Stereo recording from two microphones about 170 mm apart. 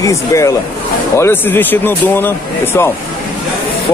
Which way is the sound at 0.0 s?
20° left (ahead or behind).